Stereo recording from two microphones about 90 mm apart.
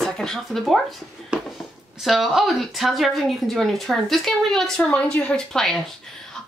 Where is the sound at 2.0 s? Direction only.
5° right (ahead or behind).